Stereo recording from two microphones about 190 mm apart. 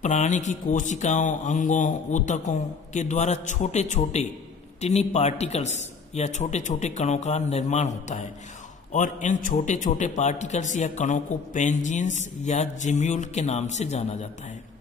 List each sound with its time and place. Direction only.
0.0 s a man's voice: 40° left (ahead or behind)
8.9 s a man's voice: 40° left (ahead or behind)